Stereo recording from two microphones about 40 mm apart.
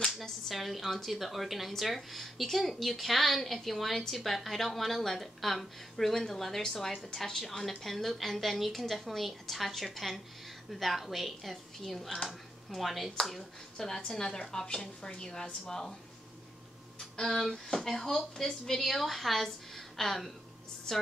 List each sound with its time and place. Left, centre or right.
0.0 s a sound: centre
0.6 s a woman's voice: centre
17.2 s a woman's voice: centre